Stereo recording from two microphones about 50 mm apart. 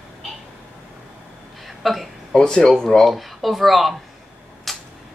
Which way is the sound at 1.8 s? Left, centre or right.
Centre.